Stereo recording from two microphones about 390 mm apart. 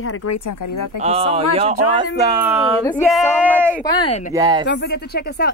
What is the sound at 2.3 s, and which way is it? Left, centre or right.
Speech, centre.